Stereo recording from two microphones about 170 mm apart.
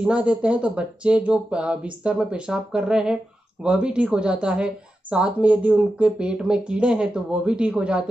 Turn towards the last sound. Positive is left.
turn(degrees=-5)  # may be behind; listen again after turning